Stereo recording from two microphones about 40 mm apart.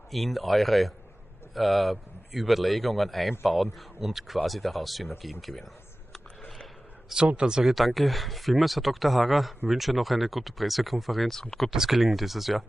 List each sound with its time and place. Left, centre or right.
0.1 s a man's voice: centre
7.3 s speech: centre
7.6 s a man's voice: centre